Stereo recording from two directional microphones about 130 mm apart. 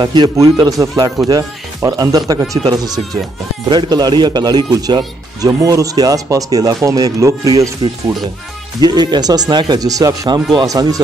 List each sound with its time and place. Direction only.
0.0 s speech: 35° right (ahead or behind)
8.8 s speech: 30° right (ahead or behind)